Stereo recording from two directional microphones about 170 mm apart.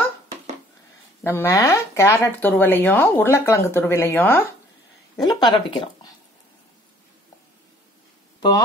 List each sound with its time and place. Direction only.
1.2 s speech: 15° left (ahead or behind)
5.2 s speech: 25° left (ahead or behind)
8.4 s speech: 25° left (ahead or behind)